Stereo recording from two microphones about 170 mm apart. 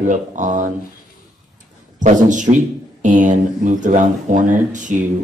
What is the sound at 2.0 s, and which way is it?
Speech, 45° right (ahead or behind).